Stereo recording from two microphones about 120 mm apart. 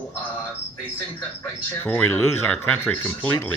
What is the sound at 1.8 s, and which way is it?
A man's voice, 15° left (ahead or behind).